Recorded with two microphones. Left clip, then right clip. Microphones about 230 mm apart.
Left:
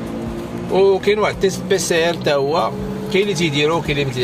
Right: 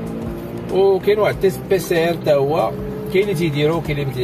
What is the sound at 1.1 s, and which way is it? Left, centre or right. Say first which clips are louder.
Speech: right 1 dB; left.